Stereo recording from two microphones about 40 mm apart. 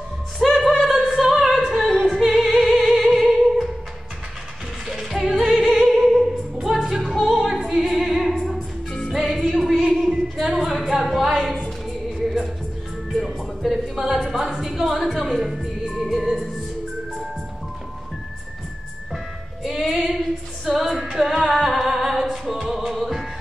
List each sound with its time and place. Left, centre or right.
0.4 s music: centre
0.7 s a sound: centre
1.1 s opera: centre
1.5 s music: centre
4.8 s music: centre
8.5 s music: left
9.1 s music: centre
10.4 s a sound: centre
13.1 s music: centre
14.3 s a sound: centre
15.0 s music: centre
15.2 s music: centre
19.8 s female singing: centre